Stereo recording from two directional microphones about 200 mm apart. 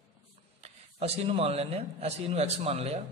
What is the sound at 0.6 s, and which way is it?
A man's voice, 30° right (ahead or behind).